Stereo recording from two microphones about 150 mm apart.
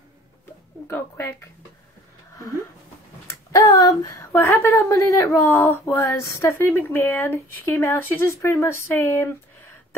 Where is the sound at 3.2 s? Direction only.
20° left (ahead or behind).